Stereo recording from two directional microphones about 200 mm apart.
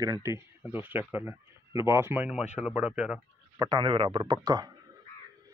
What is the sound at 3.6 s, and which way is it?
A man's voice, 20° right (ahead or behind).